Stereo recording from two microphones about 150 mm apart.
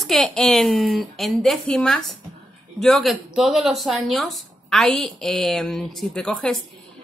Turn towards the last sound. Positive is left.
turn(degrees=5)  # may be behind; listen again after turning